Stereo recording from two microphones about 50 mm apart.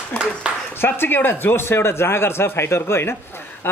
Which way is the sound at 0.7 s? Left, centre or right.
Left.